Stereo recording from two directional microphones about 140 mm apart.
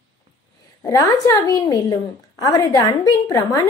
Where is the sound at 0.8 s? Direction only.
25° left (ahead or behind).